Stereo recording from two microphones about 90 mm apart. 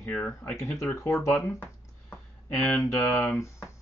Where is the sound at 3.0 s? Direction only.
25° left (ahead or behind).